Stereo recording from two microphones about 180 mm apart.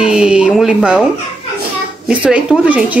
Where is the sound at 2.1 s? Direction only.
5° right (ahead or behind).